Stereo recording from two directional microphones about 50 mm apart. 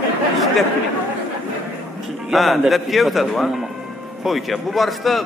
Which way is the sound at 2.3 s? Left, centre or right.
Centre.